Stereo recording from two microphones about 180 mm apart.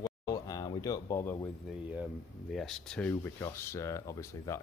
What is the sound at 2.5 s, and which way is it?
Speech, centre (ahead or behind).